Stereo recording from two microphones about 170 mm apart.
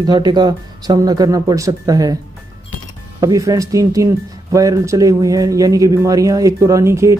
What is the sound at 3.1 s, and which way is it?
Speech, 20° right (ahead or behind).